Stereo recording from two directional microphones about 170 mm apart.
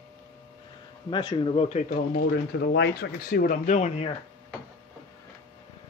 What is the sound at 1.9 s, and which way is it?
Speech, 70° left (ahead or behind).